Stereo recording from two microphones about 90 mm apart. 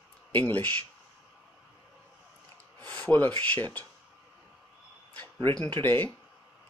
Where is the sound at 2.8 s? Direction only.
20° left (ahead or behind).